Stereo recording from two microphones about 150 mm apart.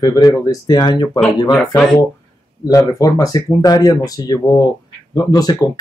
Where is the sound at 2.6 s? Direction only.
20° left (ahead or behind).